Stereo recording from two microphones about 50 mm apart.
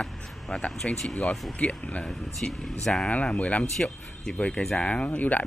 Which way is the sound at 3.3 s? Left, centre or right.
Left.